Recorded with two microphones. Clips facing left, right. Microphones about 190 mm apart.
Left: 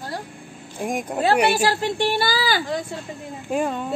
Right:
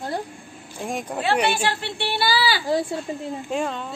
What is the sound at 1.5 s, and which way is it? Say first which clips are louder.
Speech: left 5 dB; 40° left (ahead or behind).